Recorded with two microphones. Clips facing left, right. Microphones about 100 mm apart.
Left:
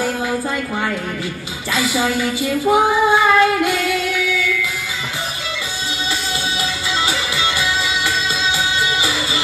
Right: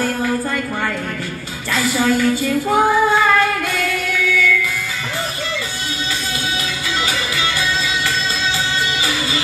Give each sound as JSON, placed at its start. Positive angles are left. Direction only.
{"t": 1.7, "sound": "a woman's voice", "side_deg": 15}
{"t": 2.4, "sound": "female singing", "side_deg": 10}